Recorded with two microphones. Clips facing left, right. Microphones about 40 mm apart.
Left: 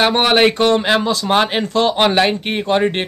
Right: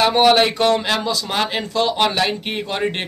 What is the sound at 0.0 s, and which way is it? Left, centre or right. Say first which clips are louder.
A man's voice: left 1 dB; left.